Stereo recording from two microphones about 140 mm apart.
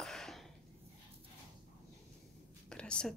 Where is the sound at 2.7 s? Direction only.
5° left (ahead or behind).